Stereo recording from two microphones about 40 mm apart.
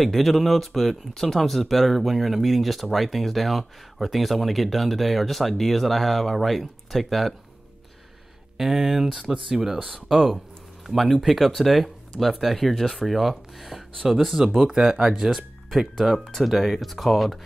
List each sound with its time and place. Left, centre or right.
0.0 s speech: centre
8.5 s speech: centre
9.2 s speech: right
11.0 s speech: centre
11.2 s speech: centre